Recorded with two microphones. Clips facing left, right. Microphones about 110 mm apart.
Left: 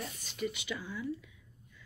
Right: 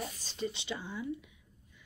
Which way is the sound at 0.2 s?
30° right (ahead or behind).